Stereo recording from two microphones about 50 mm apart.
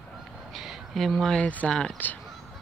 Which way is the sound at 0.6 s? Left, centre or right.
Centre.